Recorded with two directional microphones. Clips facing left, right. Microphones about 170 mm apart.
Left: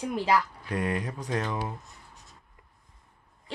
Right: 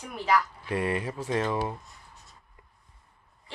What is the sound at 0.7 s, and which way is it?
Speech, 5° right (ahead or behind).